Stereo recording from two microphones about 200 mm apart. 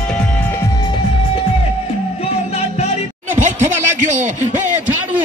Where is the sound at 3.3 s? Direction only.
35° right (ahead or behind).